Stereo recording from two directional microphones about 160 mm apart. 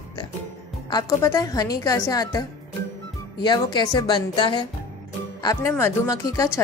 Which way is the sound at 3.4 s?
25° left (ahead or behind).